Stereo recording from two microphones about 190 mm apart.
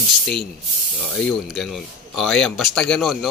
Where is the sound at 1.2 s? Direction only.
5° left (ahead or behind).